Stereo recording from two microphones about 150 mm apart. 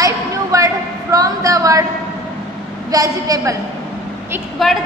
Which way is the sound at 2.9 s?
25° right (ahead or behind).